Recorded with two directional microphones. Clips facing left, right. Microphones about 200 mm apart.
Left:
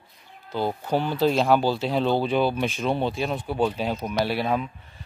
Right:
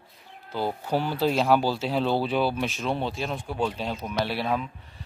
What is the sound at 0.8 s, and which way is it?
Speech, 10° right (ahead or behind).